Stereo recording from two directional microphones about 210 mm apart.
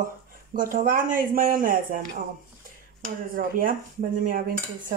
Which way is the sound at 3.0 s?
40° right (ahead or behind).